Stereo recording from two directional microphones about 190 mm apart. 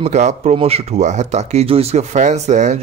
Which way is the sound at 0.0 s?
35° right (ahead or behind).